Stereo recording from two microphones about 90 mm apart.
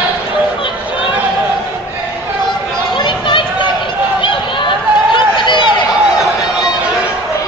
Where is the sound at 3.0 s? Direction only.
60° left (ahead or behind).